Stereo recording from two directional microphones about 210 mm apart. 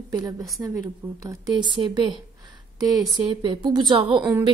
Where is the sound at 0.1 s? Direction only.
15° right (ahead or behind).